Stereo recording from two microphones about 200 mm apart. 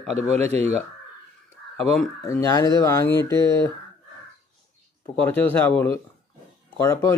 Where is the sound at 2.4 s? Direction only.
20° left (ahead or behind).